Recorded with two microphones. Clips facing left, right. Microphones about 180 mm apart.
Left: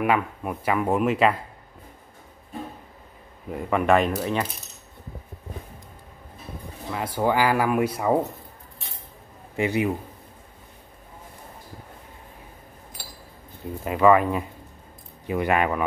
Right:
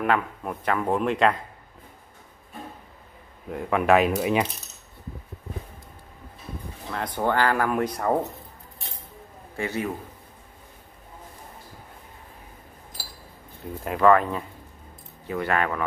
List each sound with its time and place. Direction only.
0.0 s speech: 10° left (ahead or behind)
3.4 s speech: centre (ahead or behind)
6.9 s speech: 10° left (ahead or behind)
9.6 s speech: 15° left (ahead or behind)
13.8 s speech: 5° left (ahead or behind)